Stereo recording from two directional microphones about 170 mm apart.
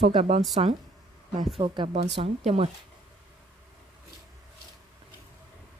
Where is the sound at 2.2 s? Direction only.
40° right (ahead or behind).